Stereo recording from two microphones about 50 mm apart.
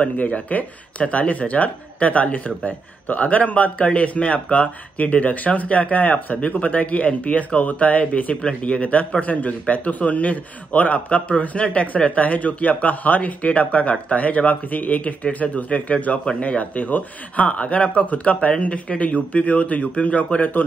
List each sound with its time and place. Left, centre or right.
0.0 s speech: left